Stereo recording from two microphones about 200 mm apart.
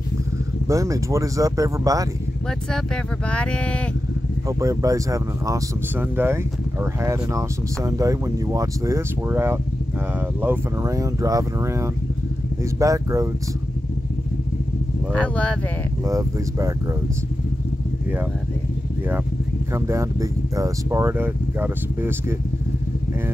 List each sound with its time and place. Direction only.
0.7 s speech: 15° right (ahead or behind)
3.3 s speech: 5° left (ahead or behind)
4.5 s speech: 15° right (ahead or behind)
15.1 s speech: 5° left (ahead or behind)
16.1 s speech: 15° right (ahead or behind)
19.7 s speech: 15° right (ahead or behind)